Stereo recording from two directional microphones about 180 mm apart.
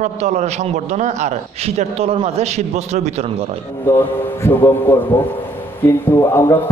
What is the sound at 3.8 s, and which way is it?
A man's voice, 15° left (ahead or behind).